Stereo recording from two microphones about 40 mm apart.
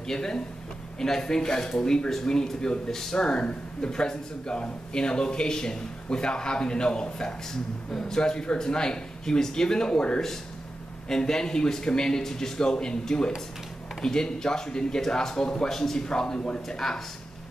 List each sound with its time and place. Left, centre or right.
0.0 s speech: centre